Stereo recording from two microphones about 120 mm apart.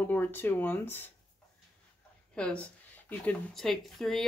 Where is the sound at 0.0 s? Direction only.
15° left (ahead or behind).